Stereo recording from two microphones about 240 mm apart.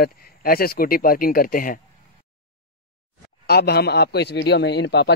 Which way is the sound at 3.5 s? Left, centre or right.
Left.